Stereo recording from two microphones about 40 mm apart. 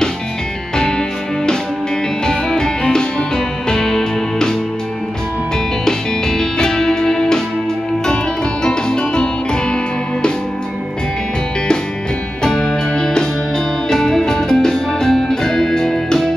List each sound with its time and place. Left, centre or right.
0.7 s music: centre
5.9 s music: centre
8.6 s music: left
12.4 s music: centre